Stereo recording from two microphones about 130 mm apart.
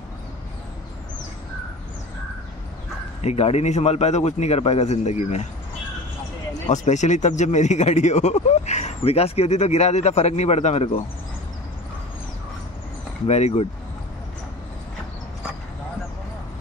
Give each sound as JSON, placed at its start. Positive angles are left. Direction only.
{"t": 3.2, "sound": "speech", "side_deg": 55}
{"t": 6.7, "sound": "speech", "side_deg": 65}
{"t": 13.3, "sound": "speech", "side_deg": 55}